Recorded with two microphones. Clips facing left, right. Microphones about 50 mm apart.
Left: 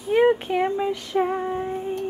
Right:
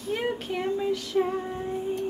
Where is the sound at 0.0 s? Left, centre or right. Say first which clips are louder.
Left 11 dB; left.